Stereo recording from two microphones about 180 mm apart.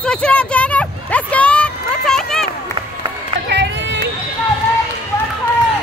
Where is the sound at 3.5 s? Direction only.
75° right (ahead or behind).